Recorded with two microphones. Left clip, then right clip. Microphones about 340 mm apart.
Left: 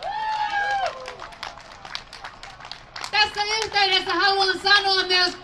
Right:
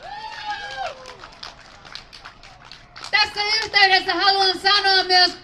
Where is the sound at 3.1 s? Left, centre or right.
Centre.